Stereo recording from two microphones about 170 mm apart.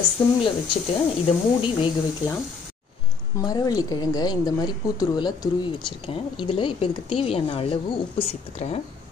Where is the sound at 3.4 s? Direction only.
20° left (ahead or behind); by 8.8 s 40° left (ahead or behind).